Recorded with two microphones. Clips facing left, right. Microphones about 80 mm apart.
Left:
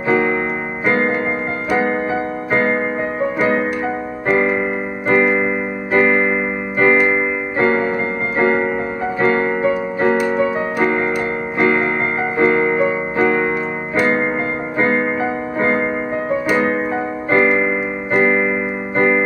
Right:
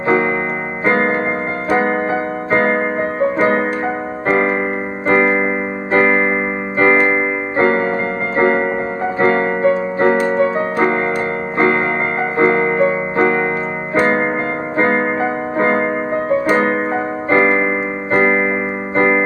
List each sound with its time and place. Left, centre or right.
0.1 s music: right
3.3 s music: right
4.3 s piano: right
5.0 s music: right
6.8 s keyboard: right
8.4 s music: right
16.4 s keyboard: right
17.3 s piano: right
18.1 s music: right